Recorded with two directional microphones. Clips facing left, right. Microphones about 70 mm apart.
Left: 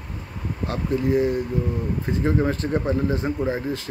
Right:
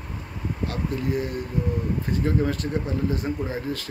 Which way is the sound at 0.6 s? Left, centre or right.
Left.